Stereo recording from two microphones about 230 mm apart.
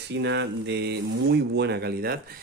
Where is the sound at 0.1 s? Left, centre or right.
Right.